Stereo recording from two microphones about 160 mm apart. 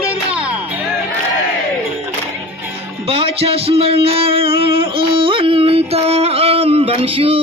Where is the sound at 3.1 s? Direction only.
35° right (ahead or behind).